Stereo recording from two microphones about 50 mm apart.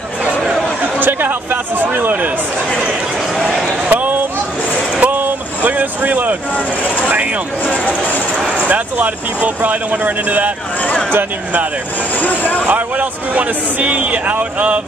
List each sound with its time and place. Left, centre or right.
0.9 s speech: right
3.9 s a sound: right
5.0 s vehicle: right
6.5 s speech: left
8.6 s speech: right
12.2 s speech: left
12.6 s speech: right